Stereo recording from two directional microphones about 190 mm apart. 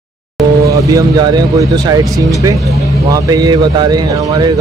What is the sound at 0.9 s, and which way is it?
Speech, 20° right (ahead or behind).